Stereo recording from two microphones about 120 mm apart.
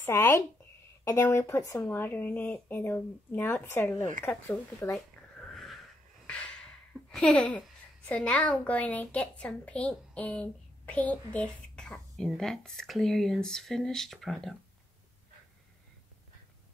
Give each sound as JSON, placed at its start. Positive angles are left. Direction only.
{"t": 0.0, "sound": "speech", "side_deg": 20}
{"t": 4.9, "sound": "a sound", "side_deg": 0}
{"t": 6.2, "sound": "speech", "side_deg": 10}